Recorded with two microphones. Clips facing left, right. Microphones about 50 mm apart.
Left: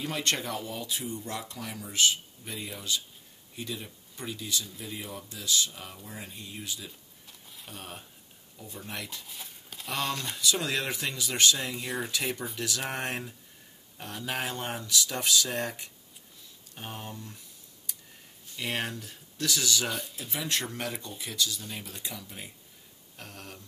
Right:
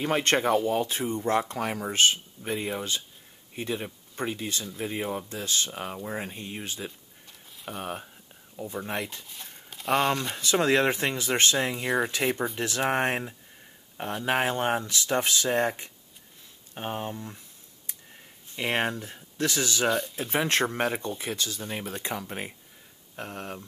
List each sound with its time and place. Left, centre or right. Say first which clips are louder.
0.0 s speech: right 7 dB; right
9.2 s a sound: right 1 dB; centre
10.3 s speech: right 7 dB; right
18.5 s speech: right 6 dB; right
19.9 s speech: right 9 dB; centre
20.2 s speech: right 8 dB; right
23.1 s speech: right 9 dB; right